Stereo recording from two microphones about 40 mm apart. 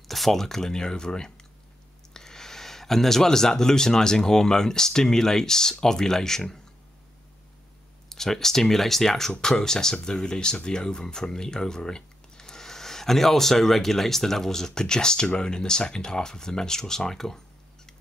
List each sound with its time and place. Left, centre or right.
0.1 s speech: centre
8.1 s speech: centre